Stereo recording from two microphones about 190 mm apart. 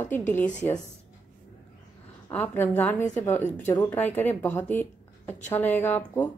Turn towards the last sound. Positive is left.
turn(degrees=10)  # may be behind; listen again after turning